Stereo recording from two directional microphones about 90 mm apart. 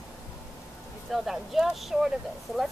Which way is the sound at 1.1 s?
5° right (ahead or behind).